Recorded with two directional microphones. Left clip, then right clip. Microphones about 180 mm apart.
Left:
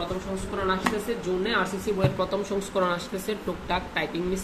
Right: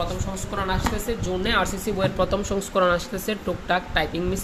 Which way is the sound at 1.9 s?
40° right (ahead or behind).